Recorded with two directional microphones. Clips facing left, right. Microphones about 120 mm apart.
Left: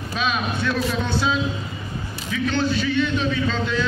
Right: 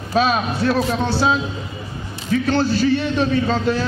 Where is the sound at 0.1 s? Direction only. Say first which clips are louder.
Right 7 dB; 40° right (ahead or behind).